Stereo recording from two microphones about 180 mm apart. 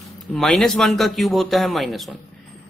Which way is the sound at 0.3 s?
Centre (ahead or behind).